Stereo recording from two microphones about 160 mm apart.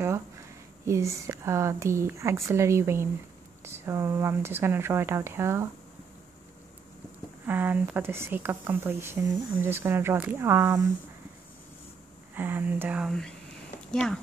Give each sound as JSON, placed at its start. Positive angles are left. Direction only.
{"t": 0.8, "sound": "speech", "side_deg": -20}
{"t": 7.4, "sound": "speech", "side_deg": -10}
{"t": 12.4, "sound": "speech", "side_deg": -10}
{"t": 13.9, "sound": "speech", "side_deg": 5}